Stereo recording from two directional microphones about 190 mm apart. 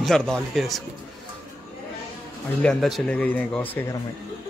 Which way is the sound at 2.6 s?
Centre (ahead or behind).